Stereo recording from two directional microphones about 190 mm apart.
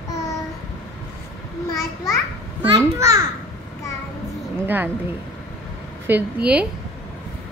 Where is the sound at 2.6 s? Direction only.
15° right (ahead or behind).